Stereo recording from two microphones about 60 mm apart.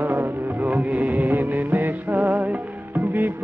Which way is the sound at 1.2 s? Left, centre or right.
Right.